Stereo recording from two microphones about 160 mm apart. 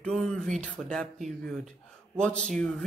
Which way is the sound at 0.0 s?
5° left (ahead or behind).